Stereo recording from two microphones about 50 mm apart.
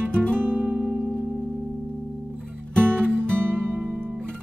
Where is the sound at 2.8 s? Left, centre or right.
Right.